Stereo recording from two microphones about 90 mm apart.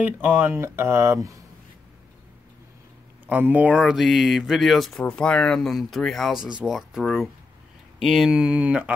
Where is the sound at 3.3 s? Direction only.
15° right (ahead or behind).